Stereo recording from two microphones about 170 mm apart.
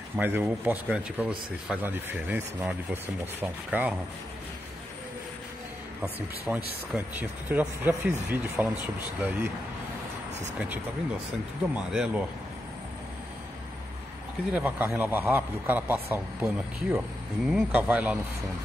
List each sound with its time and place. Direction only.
0.1 s speech: 10° right (ahead or behind)
6.1 s speech: 5° right (ahead or behind)
11.7 s speech: 5° right (ahead or behind)
14.5 s speech: 10° right (ahead or behind)
17.5 s speech: 5° right (ahead or behind)